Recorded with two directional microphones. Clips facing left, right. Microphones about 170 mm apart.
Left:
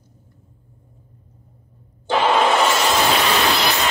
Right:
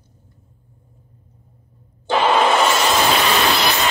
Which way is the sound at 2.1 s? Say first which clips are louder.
Right 1 dB; 90° right.